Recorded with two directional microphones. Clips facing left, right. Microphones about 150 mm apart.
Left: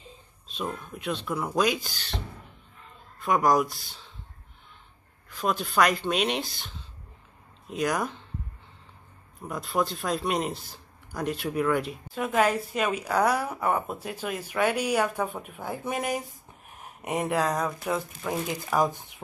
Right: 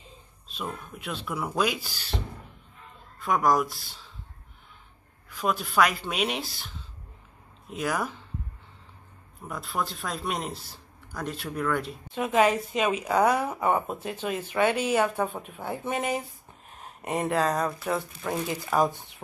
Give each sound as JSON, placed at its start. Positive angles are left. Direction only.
{"t": 0.9, "sound": "speech", "side_deg": -5}
{"t": 3.2, "sound": "speech", "side_deg": 0}
{"t": 5.3, "sound": "speech", "side_deg": -10}
{"t": 7.7, "sound": "speech", "side_deg": -5}
{"t": 9.5, "sound": "speech", "side_deg": 0}
{"t": 13.8, "sound": "speech", "side_deg": 10}